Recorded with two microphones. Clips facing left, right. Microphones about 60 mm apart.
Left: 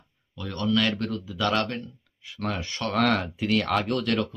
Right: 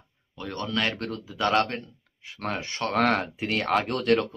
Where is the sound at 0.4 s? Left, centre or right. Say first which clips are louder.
Left 3 dB; right.